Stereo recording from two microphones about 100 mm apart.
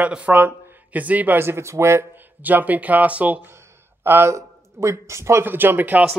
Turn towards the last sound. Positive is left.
turn(degrees=-20)  # may be behind; listen again after turning